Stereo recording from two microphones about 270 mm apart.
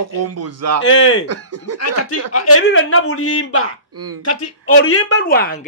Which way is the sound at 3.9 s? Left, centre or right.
Right.